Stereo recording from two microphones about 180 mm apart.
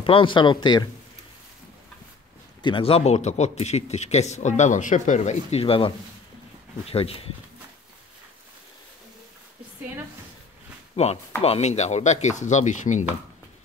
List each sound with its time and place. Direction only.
0.0 s speech: 30° left (ahead or behind)
2.6 s speech: 30° left (ahead or behind)
11.0 s speech: 35° left (ahead or behind)